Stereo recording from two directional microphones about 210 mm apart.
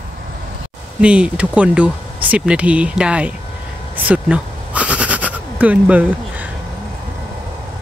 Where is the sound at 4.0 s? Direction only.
5° right (ahead or behind).